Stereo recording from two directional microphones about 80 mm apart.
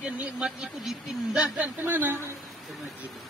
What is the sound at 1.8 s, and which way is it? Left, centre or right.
Speech, right.